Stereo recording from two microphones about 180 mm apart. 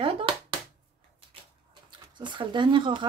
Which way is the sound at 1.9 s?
25° right (ahead or behind).